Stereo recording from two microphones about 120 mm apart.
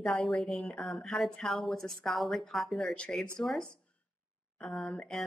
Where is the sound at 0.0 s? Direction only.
Centre (ahead or behind).